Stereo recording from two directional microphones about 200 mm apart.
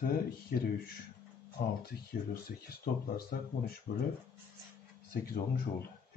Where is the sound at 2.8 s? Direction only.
45° left (ahead or behind).